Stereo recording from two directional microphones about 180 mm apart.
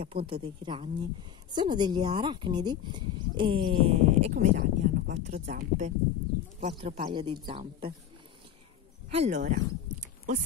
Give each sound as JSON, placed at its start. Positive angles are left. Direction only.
{"t": 0.0, "sound": "speech", "side_deg": -30}
{"t": 4.3, "sound": "speech", "side_deg": -50}
{"t": 9.1, "sound": "speech", "side_deg": -35}
{"t": 9.5, "sound": "a sound", "side_deg": -45}